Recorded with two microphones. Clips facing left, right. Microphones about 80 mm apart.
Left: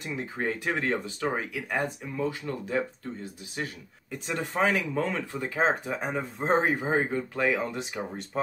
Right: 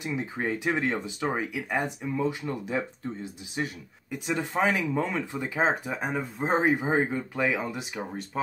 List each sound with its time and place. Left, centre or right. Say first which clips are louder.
0.0 s speech: right 1 dB; centre
4.1 s speech: right 2 dB; centre
5.9 s speech: even; centre
7.4 s speech: left 1 dB; centre